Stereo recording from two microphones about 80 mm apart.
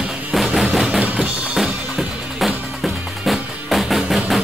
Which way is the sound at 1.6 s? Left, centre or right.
Centre.